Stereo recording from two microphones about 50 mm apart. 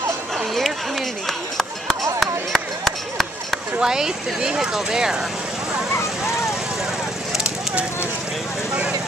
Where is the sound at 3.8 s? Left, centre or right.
Centre.